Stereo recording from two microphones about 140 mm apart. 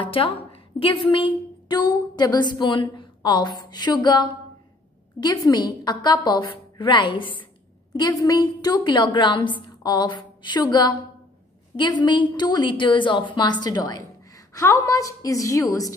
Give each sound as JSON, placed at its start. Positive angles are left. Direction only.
{"t": 0.0, "sound": "a woman's voice", "side_deg": 40}